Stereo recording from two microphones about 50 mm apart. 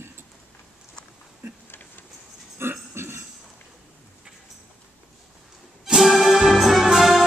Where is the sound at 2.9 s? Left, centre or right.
Right.